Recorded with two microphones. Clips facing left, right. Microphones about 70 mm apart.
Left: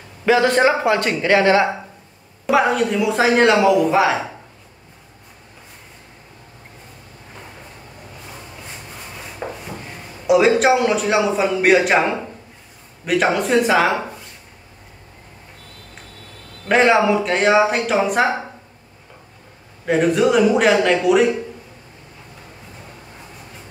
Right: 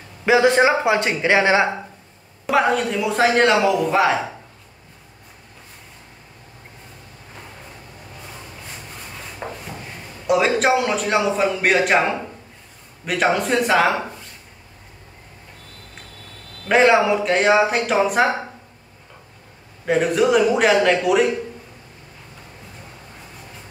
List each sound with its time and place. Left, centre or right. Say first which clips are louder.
0.2 s speech: even; centre
2.4 s a man's voice: left 2 dB; centre
9.4 s a sound: left 2 dB; centre
10.2 s a man's voice: left 4 dB; centre
16.6 s a man's voice: even; centre
19.9 s a man's voice: left 1 dB; centre